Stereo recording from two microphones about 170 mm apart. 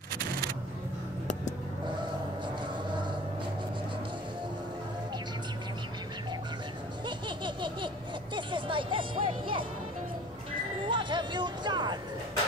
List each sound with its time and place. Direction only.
2.4 s vehicle: 25° right (ahead or behind)
7.1 s baby laughter: 25° right (ahead or behind)
8.4 s music: 30° right (ahead or behind)
10.9 s music: 25° right (ahead or behind)